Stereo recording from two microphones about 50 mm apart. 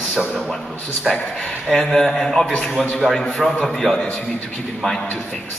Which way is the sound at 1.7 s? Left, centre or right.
Centre.